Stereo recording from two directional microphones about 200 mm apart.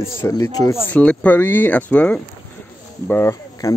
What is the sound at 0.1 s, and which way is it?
Speech, 15° left (ahead or behind).